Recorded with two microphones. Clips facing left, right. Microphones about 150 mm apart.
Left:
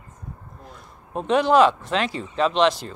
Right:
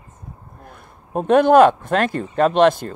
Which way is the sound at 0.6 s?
55° right (ahead or behind).